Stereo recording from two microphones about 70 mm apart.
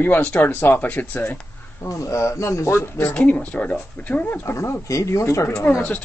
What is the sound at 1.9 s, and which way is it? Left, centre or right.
Speech, left.